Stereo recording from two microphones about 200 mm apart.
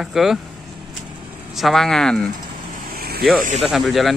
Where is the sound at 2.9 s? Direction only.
50° right (ahead or behind).